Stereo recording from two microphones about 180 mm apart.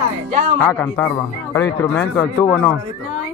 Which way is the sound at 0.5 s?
5° left (ahead or behind).